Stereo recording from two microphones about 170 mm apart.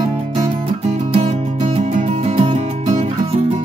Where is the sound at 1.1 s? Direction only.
35° right (ahead or behind).